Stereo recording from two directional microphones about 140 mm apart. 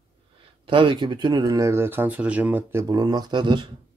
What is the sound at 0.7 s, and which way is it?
Speech, 35° right (ahead or behind).